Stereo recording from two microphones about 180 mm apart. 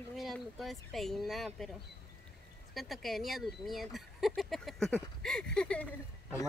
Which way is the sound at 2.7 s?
Centre (ahead or behind).